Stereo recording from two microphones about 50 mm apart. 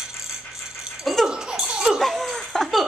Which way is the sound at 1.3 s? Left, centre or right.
Centre.